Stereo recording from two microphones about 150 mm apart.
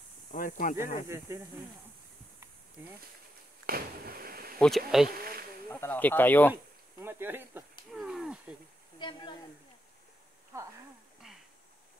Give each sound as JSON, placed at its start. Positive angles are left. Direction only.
{"t": 0.3, "sound": "speech", "side_deg": 60}
{"t": 1.0, "sound": "speech", "side_deg": -20}
{"t": 3.6, "sound": "a sound", "side_deg": -80}
{"t": 4.6, "sound": "speech", "side_deg": 0}
{"t": 5.7, "sound": "speech", "side_deg": 15}
{"t": 6.5, "sound": "speech", "side_deg": -15}
{"t": 7.9, "sound": "speech", "side_deg": -5}
{"t": 8.9, "sound": "speech", "side_deg": 30}